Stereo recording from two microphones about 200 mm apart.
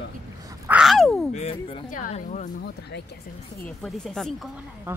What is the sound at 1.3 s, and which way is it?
Speech, 30° left (ahead or behind).